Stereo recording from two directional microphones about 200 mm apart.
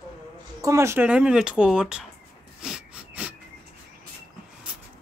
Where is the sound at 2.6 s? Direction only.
5° right (ahead or behind).